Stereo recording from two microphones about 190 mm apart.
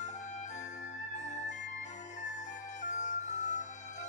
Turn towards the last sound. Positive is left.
turn(degrees=40)  # may be behind; listen again after turning